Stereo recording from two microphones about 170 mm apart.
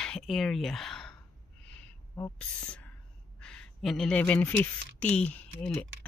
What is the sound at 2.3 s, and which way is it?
Speech, 5° left (ahead or behind).